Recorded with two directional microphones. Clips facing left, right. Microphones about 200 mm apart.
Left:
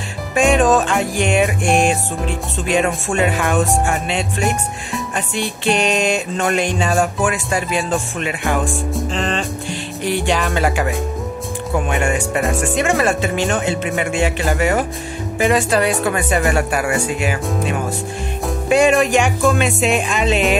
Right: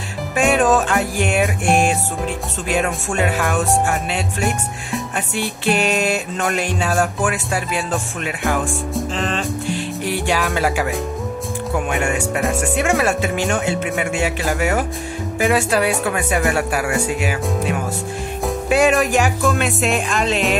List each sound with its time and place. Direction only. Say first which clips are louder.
0.4 s speech: left 2 dB; 5° right (ahead or behind)